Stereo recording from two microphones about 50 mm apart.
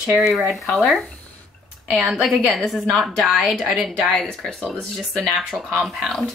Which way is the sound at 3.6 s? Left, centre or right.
Centre.